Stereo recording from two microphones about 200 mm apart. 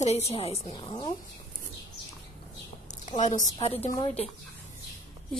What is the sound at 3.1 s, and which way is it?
A woman's voice, 35° left (ahead or behind).